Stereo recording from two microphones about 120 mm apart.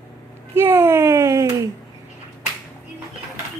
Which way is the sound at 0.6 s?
20° right (ahead or behind).